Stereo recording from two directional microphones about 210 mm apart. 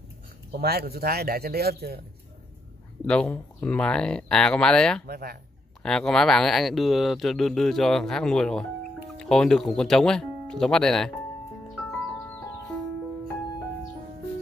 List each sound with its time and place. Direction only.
0.5 s a man's voice: 50° right (ahead or behind)
3.1 s speech: 5° left (ahead or behind)
5.0 s a man's voice: 45° right (ahead or behind)
5.8 s speech: 5° left (ahead or behind)